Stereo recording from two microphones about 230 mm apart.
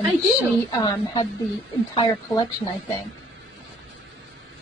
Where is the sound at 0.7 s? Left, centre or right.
Centre.